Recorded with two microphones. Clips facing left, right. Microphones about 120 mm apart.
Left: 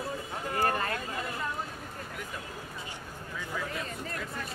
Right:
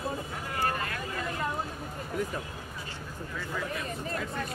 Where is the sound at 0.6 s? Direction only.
35° left (ahead or behind).